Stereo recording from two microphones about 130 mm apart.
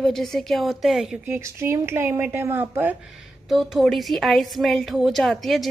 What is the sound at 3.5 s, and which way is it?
A woman's voice, centre (ahead or behind).